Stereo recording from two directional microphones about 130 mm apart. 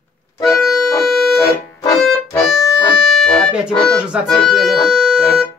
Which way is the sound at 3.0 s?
Centre (ahead or behind).